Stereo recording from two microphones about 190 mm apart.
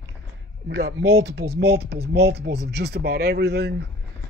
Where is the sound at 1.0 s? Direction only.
15° right (ahead or behind).